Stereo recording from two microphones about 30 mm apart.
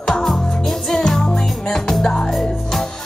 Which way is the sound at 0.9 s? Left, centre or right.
Centre.